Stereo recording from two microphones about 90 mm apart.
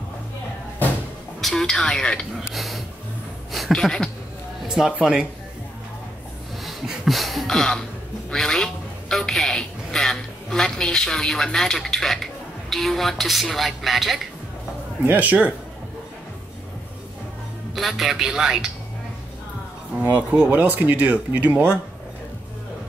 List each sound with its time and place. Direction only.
1.4 s a woman's voice: 5° left (ahead or behind)
4.6 s speech: 10° right (ahead or behind)
6.6 s a woman's voice: centre (ahead or behind)
15.0 s speech: 20° right (ahead or behind)
17.7 s a woman's voice: centre (ahead or behind)
20.0 s speech: 20° right (ahead or behind)